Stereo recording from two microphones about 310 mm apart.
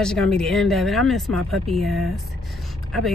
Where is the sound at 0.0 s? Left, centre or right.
Centre.